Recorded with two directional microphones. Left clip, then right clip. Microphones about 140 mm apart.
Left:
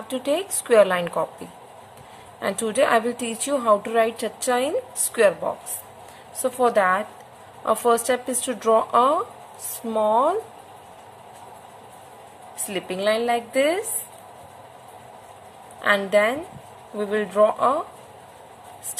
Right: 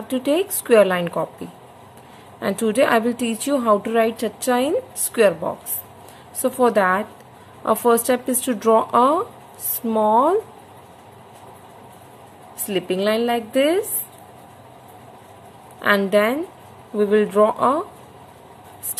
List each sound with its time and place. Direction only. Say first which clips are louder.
0.1 s speech: right 4 dB; 15° right (ahead or behind)
1.1 s speech: right 1 dB; centre (ahead or behind)
2.4 s a woman's voice: right 3 dB; 15° right (ahead or behind)
12.6 s a woman's voice: right 3 dB; 20° right (ahead or behind)
15.8 s a woman's voice: right 2 dB; 20° right (ahead or behind)